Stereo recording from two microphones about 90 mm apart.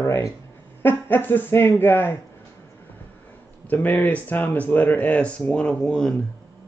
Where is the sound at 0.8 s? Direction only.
20° left (ahead or behind).